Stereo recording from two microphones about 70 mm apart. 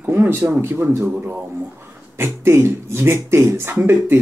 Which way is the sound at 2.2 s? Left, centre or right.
Right.